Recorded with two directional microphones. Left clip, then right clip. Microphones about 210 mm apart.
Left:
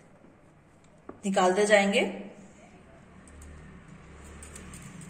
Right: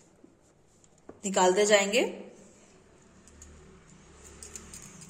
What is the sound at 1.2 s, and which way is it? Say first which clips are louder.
Speech: even; 45° right (ahead or behind).